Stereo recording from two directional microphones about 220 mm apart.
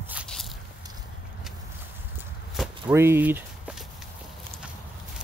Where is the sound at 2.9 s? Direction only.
10° right (ahead or behind).